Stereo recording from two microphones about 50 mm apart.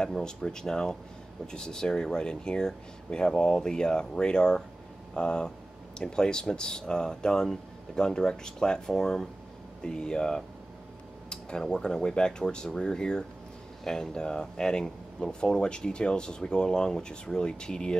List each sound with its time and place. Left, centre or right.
0.0 s speech: centre